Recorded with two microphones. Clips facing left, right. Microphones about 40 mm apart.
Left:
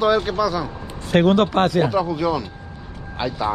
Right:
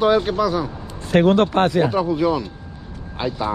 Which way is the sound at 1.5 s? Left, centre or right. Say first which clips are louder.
Right 1 dB; left.